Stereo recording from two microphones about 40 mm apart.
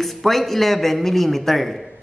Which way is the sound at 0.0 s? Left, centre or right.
Centre.